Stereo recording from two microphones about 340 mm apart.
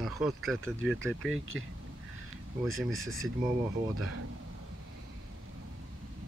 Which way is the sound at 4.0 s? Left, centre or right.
Right.